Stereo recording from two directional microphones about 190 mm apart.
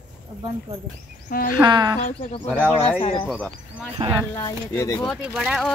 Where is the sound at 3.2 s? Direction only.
5° left (ahead or behind).